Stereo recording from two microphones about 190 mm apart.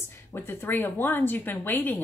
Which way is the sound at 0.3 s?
10° left (ahead or behind).